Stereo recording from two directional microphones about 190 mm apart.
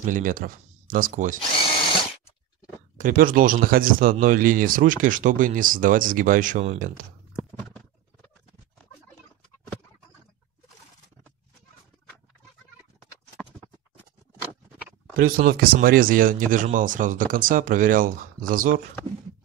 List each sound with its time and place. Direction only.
0.0 s speech: 45° right (ahead or behind)
3.0 s speech: 45° right (ahead or behind)
15.1 s speech: 50° right (ahead or behind)